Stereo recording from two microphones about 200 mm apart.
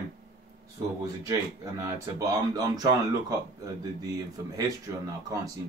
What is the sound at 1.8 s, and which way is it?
Speech, 20° right (ahead or behind).